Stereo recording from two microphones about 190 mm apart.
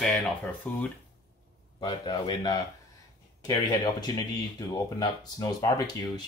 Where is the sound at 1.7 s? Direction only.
25° left (ahead or behind).